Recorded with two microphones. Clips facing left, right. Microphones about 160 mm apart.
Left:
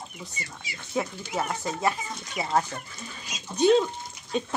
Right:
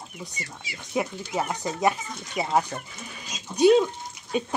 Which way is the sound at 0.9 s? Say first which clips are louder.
Right 2 dB; 10° right (ahead or behind).